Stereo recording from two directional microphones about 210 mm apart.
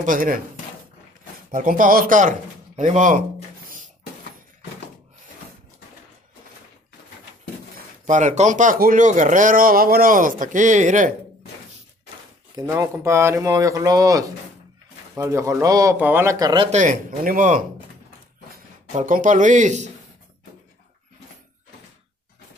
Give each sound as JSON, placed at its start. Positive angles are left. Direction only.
{"t": 0.0, "sound": "speech", "side_deg": -40}
{"t": 1.5, "sound": "speech", "side_deg": -40}
{"t": 8.1, "sound": "speech", "side_deg": -35}
{"t": 12.5, "sound": "speech", "side_deg": -15}
{"t": 16.7, "sound": "speech", "side_deg": -40}
{"t": 18.9, "sound": "speech", "side_deg": -40}